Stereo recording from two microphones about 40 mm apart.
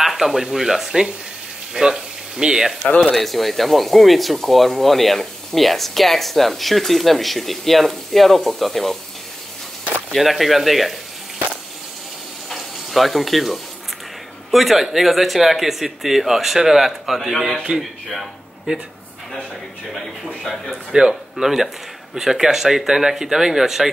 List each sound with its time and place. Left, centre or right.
0.0 s speech: centre
1.7 s a sound: centre
3.0 s speech: centre
10.1 s speech: centre
12.4 s water: centre
14.5 s speech: centre
17.7 s speech: centre
20.9 s speech: right
21.4 s speech: centre